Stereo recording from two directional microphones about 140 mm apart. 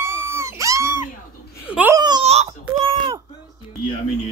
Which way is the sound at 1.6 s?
10° right (ahead or behind).